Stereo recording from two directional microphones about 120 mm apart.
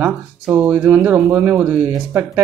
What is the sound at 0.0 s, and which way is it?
Speech, 15° right (ahead or behind).